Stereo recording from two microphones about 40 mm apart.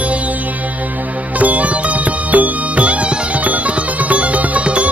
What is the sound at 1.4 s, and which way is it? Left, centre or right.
Music, right.